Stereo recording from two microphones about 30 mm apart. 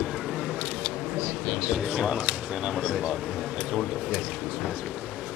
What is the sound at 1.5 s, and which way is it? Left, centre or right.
Speech, right.